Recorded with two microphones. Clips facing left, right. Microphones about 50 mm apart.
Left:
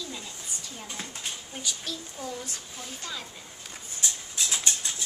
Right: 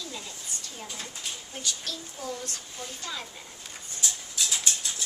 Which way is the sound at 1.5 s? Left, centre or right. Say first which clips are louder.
Right 1 dB; centre.